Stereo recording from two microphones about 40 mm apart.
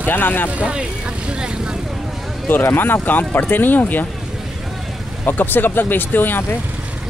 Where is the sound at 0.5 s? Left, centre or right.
Right.